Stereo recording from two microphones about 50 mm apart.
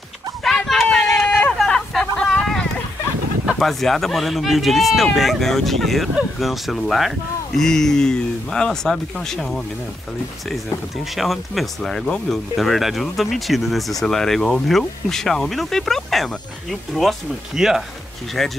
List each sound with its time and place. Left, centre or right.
0.4 s a sound: centre
0.9 s run: centre
1.7 s hubbub: centre
2.2 s a sound: centre
3.5 s speech: centre
11.1 s speech: centre
17.6 s speech: centre
18.4 s speech: centre